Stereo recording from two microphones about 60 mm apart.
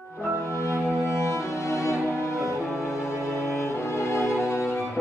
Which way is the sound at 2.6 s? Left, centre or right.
Centre.